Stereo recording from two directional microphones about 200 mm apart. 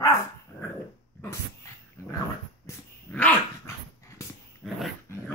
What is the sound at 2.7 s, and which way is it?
Dog, 15° left (ahead or behind).